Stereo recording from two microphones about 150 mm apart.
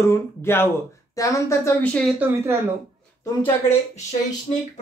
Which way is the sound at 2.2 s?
10° right (ahead or behind).